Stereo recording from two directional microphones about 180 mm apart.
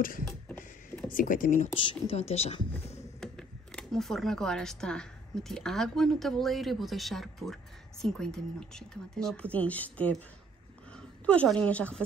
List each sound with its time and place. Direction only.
1.1 s speech: 50° left (ahead or behind)
1.8 s a woman's voice: 30° left (ahead or behind)
3.2 s speech: 5° left (ahead or behind)
11.2 s a woman's voice: 5° left (ahead or behind)